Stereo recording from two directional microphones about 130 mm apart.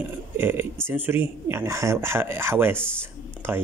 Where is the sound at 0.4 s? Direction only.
15° right (ahead or behind).